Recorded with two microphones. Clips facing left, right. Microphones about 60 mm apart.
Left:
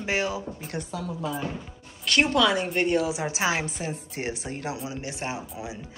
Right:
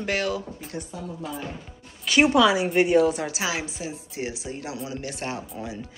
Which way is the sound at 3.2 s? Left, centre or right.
Left.